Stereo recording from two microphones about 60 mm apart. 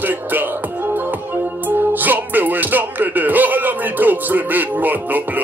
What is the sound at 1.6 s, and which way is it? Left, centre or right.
Music, right.